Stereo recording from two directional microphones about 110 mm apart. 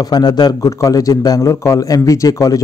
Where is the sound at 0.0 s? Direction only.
40° left (ahead or behind).